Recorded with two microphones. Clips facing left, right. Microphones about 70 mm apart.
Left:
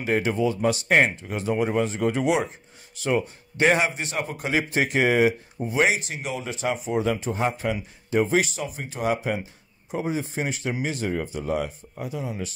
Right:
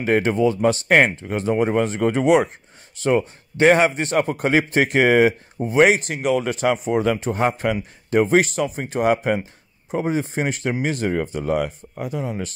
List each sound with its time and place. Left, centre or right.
0.0 s a man's voice: right